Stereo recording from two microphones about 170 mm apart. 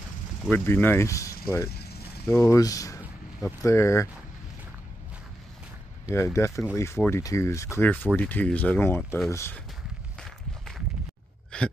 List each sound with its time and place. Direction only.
0.5 s speech: 10° left (ahead or behind)
1.7 s vehicle: 70° left (ahead or behind)
2.3 s speech: 20° left (ahead or behind)
6.0 s speech: 15° left (ahead or behind)
11.5 s a sound: 5° left (ahead or behind)